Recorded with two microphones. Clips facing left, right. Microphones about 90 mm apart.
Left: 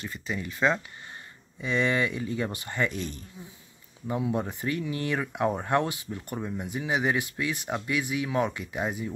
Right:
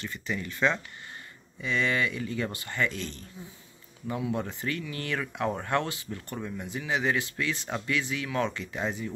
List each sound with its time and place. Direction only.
0.0 s speech: 20° left (ahead or behind)